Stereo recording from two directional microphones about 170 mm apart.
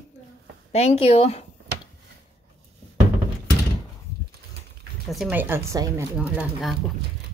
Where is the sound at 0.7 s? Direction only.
40° left (ahead or behind).